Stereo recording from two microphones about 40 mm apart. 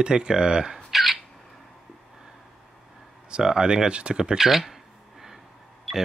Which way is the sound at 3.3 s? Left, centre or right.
Centre.